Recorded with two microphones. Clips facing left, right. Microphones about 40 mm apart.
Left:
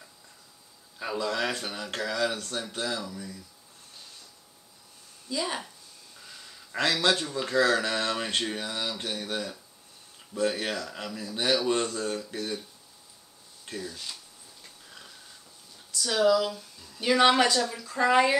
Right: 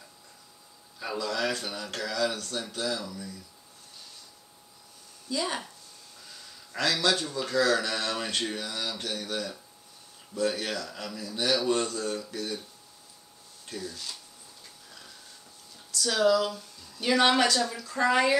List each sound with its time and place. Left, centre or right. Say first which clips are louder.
0.9 s speech: left 2 dB; left
3.0 s speech: left 1 dB; centre
5.3 s a woman's voice: even; centre
6.2 s a sound: left 2 dB; centre
6.8 s speech: left 1 dB; left
13.7 s speech: left 1 dB; centre
14.9 s a sound: left 2 dB; centre
15.9 s a woman's voice: left 1 dB; centre
18.1 s speech: left 2 dB; centre